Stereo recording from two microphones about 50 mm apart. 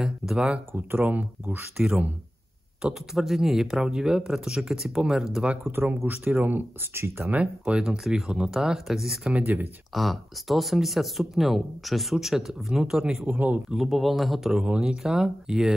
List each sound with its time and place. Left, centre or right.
0.7 s speech: right
2.8 s speech: centre
3.8 s speech: centre
5.6 s speech: right
6.9 s speech: right
7.2 s speech: right
7.7 s speech: centre
9.3 s speech: right
9.9 s speech: centre
13.2 s speech: right
13.7 s speech: centre